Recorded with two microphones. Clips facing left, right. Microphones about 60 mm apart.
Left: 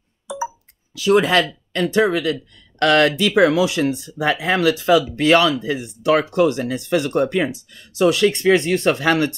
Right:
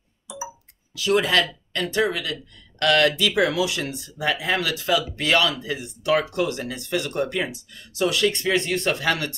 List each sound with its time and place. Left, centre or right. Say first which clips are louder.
0.9 s speech: left 5 dB; left